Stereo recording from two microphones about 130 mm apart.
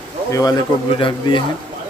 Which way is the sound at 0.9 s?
40° left (ahead or behind).